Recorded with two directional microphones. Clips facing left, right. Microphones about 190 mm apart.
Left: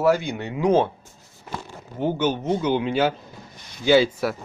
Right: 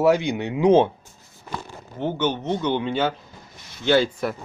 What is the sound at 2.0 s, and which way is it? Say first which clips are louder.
A man's voice: left 1 dB; 10° left (ahead or behind).